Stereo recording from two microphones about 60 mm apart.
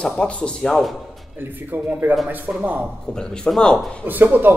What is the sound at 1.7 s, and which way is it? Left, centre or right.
Speech, right.